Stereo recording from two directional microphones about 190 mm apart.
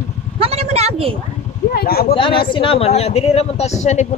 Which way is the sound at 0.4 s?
35° right (ahead or behind).